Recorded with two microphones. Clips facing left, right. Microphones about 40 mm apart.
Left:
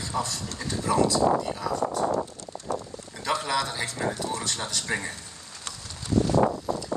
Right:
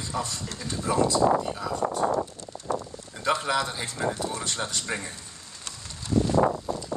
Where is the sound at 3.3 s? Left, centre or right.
Centre.